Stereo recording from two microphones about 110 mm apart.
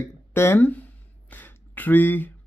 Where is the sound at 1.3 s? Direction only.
15° left (ahead or behind).